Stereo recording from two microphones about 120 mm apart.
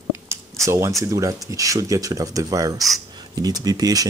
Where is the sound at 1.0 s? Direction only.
25° right (ahead or behind).